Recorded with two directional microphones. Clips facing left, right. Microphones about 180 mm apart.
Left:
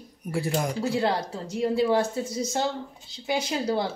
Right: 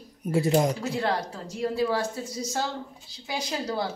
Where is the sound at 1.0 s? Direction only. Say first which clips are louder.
Left 2 dB; 25° left (ahead or behind).